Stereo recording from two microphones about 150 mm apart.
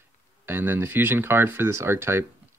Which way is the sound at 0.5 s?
15° right (ahead or behind).